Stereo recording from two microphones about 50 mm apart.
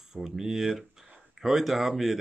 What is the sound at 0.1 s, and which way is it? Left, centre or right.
Speech, centre.